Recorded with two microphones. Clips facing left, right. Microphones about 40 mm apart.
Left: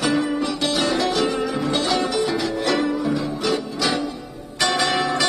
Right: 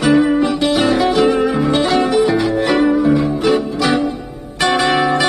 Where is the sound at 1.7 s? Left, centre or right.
Centre.